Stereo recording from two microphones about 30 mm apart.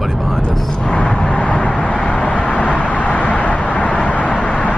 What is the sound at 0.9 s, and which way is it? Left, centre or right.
Vehicle, left.